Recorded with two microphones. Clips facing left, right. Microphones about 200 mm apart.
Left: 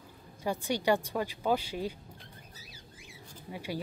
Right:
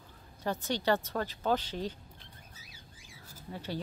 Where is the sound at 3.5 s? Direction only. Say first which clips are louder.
Left 1 dB; 10° left (ahead or behind).